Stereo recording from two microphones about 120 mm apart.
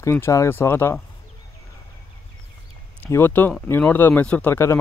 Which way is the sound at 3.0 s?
15° left (ahead or behind).